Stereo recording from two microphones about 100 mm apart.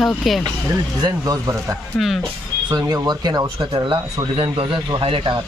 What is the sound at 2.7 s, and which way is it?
Speech, 40° right (ahead or behind).